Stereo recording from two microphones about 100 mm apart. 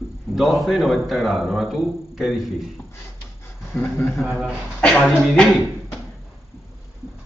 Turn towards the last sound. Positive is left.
turn(degrees=0)  # may be behind; listen again after turning